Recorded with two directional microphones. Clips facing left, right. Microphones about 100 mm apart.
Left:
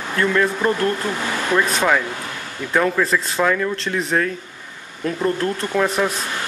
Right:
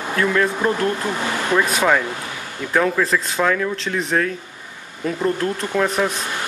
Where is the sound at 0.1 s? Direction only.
Centre (ahead or behind).